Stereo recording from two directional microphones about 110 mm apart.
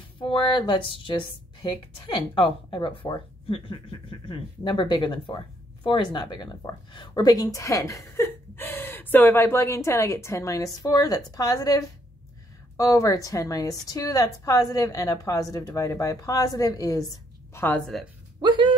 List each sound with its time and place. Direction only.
0.2 s a woman's voice: 50° left (ahead or behind); by 17.1 s 30° left (ahead or behind)
17.6 s a woman's voice: 15° left (ahead or behind)
18.4 s a sound: 45° right (ahead or behind)